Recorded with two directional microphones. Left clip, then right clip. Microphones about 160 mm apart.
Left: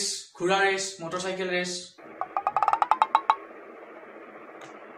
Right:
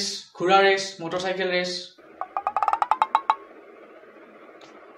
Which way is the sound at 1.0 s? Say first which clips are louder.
Right 4 dB; 50° right (ahead or behind).